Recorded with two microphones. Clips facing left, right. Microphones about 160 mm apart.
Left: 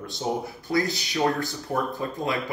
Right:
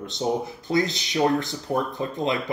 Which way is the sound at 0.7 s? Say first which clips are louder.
Right 2 dB; 20° right (ahead or behind).